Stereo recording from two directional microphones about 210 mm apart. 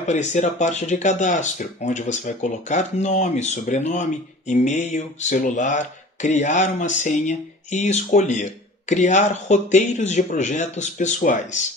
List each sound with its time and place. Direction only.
0.0 s speech: 35° left (ahead or behind)